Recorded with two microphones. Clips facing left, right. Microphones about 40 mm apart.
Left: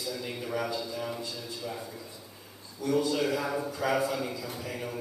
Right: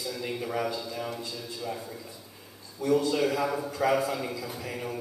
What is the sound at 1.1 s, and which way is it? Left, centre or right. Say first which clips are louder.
Speech: even; centre.